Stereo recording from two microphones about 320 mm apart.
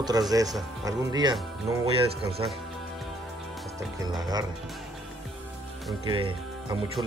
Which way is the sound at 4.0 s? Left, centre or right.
Centre.